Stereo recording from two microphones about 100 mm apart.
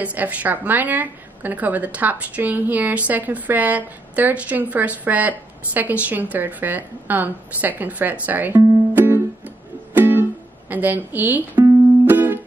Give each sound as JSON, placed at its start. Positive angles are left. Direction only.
{"t": 0.0, "sound": "a woman's voice", "side_deg": -15}
{"t": 8.9, "sound": "music", "side_deg": -20}
{"t": 10.7, "sound": "a woman's voice", "side_deg": -15}
{"t": 12.1, "sound": "music", "side_deg": -20}